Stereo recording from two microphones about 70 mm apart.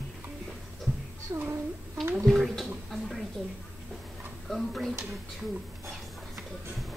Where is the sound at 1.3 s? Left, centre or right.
Right.